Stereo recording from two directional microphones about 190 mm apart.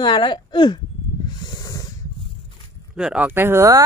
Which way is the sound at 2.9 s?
5° right (ahead or behind).